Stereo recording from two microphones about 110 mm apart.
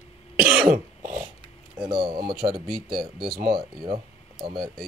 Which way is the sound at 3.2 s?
45° right (ahead or behind).